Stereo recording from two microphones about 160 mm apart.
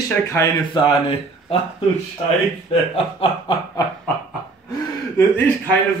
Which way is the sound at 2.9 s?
35° left (ahead or behind).